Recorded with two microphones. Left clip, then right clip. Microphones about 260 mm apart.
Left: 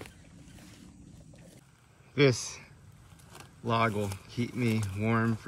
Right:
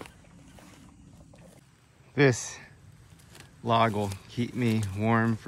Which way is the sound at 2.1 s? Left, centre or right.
Centre.